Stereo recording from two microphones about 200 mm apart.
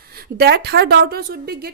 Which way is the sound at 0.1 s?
55° right (ahead or behind).